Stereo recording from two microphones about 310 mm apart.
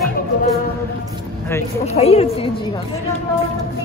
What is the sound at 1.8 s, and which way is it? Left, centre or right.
Speech, centre.